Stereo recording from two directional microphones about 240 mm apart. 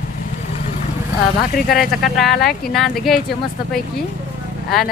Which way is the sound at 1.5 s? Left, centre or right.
Left.